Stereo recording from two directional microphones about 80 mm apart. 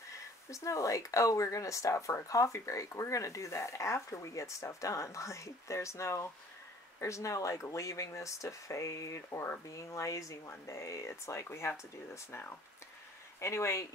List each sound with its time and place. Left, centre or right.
0.5 s speech: left